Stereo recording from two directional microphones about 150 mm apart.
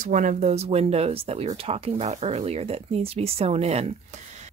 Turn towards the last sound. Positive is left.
turn(degrees=-45)  # may be behind; listen again after turning